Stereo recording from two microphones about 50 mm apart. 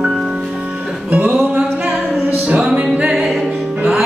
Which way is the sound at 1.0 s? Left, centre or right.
Right.